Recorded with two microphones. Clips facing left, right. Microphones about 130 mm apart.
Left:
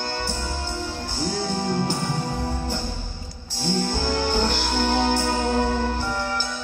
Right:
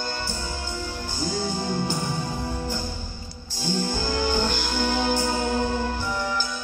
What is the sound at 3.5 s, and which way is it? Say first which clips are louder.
Music: left 2 dB; 75° left (ahead or behind).